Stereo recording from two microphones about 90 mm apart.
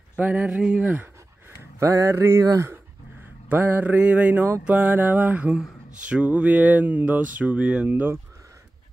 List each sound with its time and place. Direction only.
0.2 s speech: 15° right (ahead or behind)
1.6 s speech: 35° right (ahead or behind)